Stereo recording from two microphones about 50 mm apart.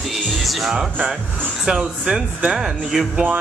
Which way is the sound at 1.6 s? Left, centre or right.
Centre.